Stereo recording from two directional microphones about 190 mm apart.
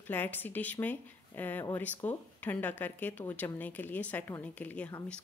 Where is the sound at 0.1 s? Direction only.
10° left (ahead or behind).